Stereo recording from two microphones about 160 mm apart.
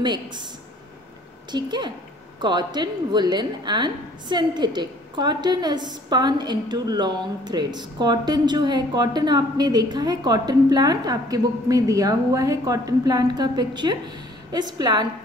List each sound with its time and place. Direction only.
0.0 s a woman's voice: 30° right (ahead or behind)
1.5 s a woman's voice: 25° right (ahead or behind)